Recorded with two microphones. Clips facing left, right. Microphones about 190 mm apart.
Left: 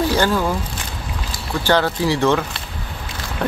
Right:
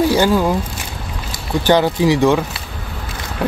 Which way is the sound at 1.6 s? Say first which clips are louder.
Right 4 dB; 15° right (ahead or behind).